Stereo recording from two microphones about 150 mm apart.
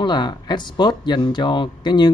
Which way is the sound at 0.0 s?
30° left (ahead or behind).